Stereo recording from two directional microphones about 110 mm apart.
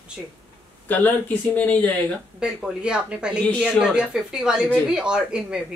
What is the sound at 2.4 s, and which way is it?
Speech, 5° right (ahead or behind).